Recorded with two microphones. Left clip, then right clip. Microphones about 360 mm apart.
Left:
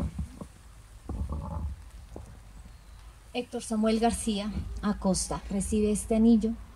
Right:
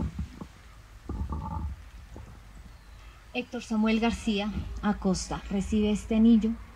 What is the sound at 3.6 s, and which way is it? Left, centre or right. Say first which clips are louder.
A woman's voice: left 2 dB; left.